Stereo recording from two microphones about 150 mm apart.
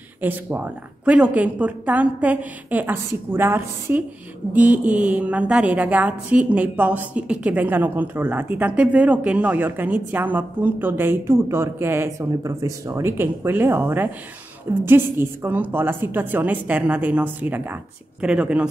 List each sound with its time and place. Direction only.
0.2 s a woman's voice: 10° right (ahead or behind)